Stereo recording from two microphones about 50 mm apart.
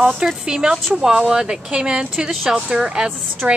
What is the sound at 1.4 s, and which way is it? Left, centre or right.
A woman's voice, centre.